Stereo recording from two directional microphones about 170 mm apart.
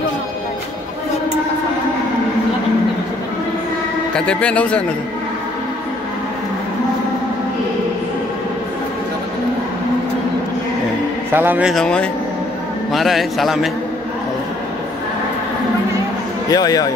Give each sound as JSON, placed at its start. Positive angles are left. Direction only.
{"t": 4.1, "sound": "a man's voice", "side_deg": 5}
{"t": 11.3, "sound": "a man's voice", "side_deg": -10}
{"t": 11.7, "sound": "a man's voice", "side_deg": 5}
{"t": 16.4, "sound": "a man's voice", "side_deg": 20}